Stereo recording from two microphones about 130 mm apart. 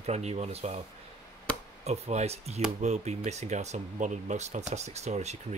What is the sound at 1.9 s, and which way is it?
Speech, 55° right (ahead or behind).